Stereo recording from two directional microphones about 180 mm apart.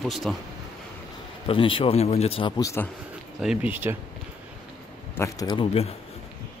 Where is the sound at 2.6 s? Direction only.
15° left (ahead or behind).